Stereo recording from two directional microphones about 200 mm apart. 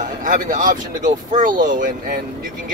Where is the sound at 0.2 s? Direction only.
40° right (ahead or behind).